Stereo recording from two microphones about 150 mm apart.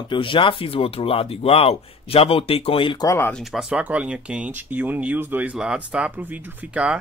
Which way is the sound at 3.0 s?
15° left (ahead or behind).